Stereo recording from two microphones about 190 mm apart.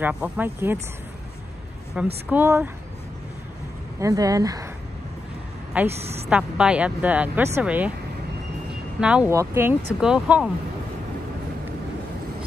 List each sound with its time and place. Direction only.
0.0 s speech: 10° right (ahead or behind)
2.2 s speech: 10° right (ahead or behind)
4.0 s speech: 20° right (ahead or behind)
5.9 s a woman's voice: 35° right (ahead or behind)
6.2 s speech: 5° right (ahead or behind)
9.0 s speech: 5° right (ahead or behind)